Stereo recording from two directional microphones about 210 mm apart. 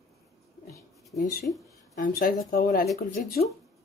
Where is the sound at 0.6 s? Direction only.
15° left (ahead or behind).